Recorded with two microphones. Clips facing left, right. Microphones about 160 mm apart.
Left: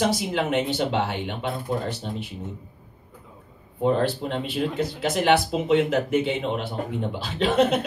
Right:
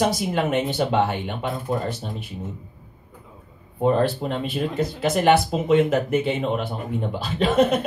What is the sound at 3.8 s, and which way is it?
A man's voice, 55° right (ahead or behind).